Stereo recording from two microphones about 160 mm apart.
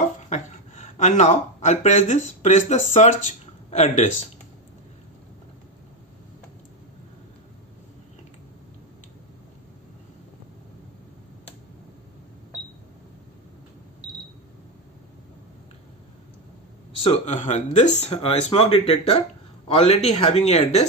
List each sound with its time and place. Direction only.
0.3 s speech: 45° left (ahead or behind)
17.0 s speech: 40° left (ahead or behind)